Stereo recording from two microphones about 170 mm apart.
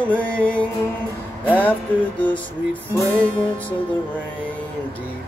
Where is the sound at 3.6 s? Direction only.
10° left (ahead or behind).